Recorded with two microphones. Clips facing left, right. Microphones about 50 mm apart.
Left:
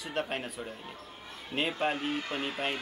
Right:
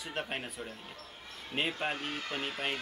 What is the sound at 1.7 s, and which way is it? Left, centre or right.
A man's voice, centre.